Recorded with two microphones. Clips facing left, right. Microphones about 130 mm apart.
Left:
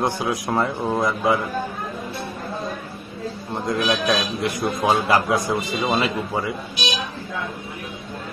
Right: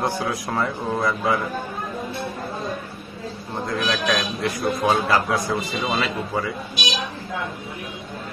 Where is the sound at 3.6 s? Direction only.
15° left (ahead or behind).